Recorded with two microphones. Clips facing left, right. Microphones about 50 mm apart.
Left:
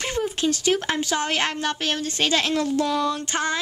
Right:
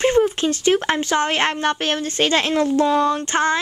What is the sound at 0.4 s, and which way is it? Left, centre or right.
A woman's voice, right.